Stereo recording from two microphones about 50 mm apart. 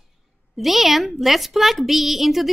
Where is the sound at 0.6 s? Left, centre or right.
Centre.